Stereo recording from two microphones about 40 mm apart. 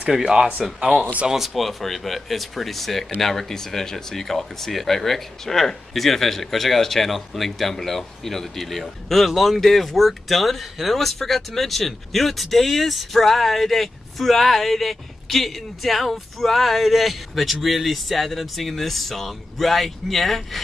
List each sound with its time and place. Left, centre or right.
0.2 s speech: centre
1.3 s speech: centre